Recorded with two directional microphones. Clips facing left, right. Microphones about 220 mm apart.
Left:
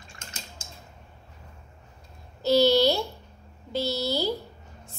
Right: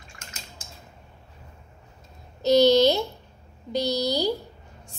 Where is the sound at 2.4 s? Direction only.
20° right (ahead or behind).